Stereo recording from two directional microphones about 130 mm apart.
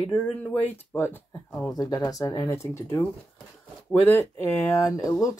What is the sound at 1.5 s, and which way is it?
Speech, centre (ahead or behind).